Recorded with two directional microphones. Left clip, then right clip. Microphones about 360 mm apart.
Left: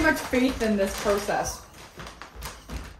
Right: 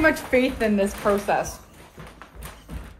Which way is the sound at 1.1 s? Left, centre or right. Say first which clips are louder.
Right 3 dB; centre.